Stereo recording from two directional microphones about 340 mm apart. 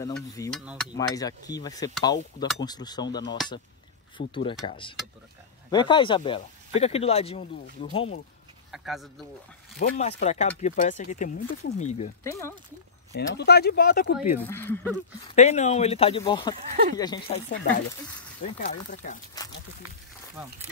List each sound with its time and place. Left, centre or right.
0.0 s a sound: centre
0.9 s speech: centre
8.7 s a sound: centre
9.8 s speech: left
12.2 s speech: centre
13.1 s speech: left
14.4 s a sound: centre
15.2 s speech: centre
17.5 s speech: left